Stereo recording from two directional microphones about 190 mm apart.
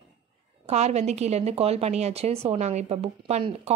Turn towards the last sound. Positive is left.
turn(degrees=-35)  # may be behind; listen again after turning